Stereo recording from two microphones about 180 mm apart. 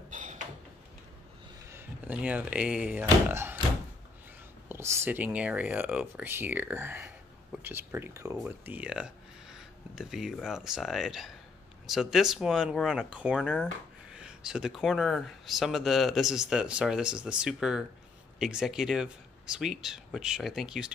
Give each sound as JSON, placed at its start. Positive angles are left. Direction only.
{"t": 0.1, "sound": "a sound", "side_deg": -45}
{"t": 1.7, "sound": "speech", "side_deg": -10}
{"t": 4.6, "sound": "speech", "side_deg": -15}